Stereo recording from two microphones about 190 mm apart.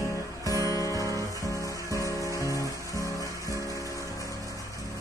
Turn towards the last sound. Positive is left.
turn(degrees=15)  # may be behind; listen again after turning